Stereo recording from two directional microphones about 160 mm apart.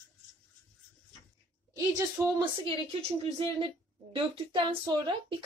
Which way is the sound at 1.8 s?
20° right (ahead or behind).